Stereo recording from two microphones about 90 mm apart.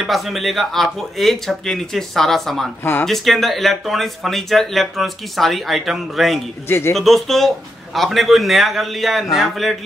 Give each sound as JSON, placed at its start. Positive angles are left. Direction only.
{"t": 0.0, "sound": "speech", "side_deg": 0}
{"t": 2.8, "sound": "speech", "side_deg": 25}
{"t": 3.1, "sound": "speech", "side_deg": 0}